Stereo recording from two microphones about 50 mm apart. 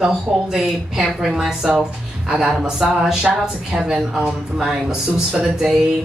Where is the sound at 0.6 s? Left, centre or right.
Centre.